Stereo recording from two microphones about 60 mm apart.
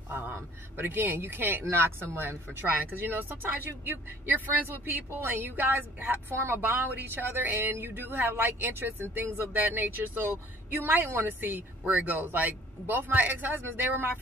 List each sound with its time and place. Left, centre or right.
0.1 s speech: right